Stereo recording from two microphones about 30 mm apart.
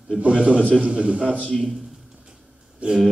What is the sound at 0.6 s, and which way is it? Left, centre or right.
Speech, left.